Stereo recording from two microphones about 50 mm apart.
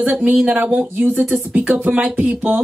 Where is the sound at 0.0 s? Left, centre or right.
Right.